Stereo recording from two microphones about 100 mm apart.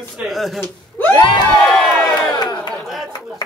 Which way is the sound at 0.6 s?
20° left (ahead or behind).